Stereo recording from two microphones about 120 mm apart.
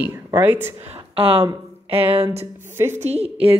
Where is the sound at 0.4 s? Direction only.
15° right (ahead or behind).